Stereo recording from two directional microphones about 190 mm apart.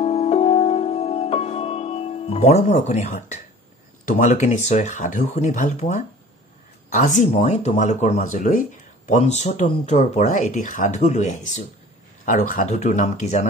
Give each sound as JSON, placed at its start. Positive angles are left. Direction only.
{"t": 0.0, "sound": "music", "side_deg": 30}
{"t": 4.1, "sound": "speech", "side_deg": 40}